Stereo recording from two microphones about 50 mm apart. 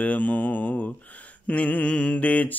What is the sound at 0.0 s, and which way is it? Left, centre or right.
Mantra, left.